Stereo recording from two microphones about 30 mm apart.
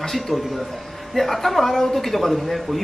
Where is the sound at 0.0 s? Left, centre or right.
Centre.